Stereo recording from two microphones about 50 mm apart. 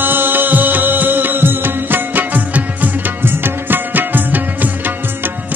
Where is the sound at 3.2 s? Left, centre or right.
Right.